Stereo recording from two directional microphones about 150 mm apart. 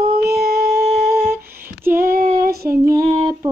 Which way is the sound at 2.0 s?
75° right (ahead or behind).